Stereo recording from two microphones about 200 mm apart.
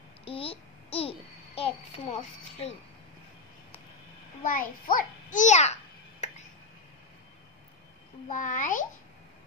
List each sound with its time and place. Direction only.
0.2 s a sound: 30° left (ahead or behind)
1.6 s a child's voice: 30° left (ahead or behind)
4.4 s a child's voice: 45° left (ahead or behind)
8.3 s a child's voice: 40° left (ahead or behind)